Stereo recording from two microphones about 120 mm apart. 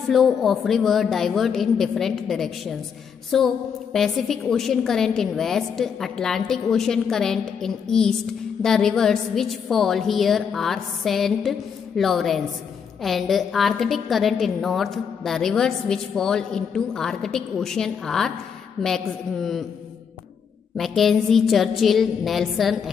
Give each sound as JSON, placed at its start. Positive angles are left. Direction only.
{"t": 0.1, "sound": "a woman's voice", "side_deg": 0}
{"t": 20.7, "sound": "a woman's voice", "side_deg": 0}